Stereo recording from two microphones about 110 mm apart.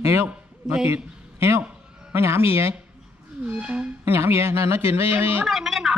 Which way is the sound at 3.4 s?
10° right (ahead or behind).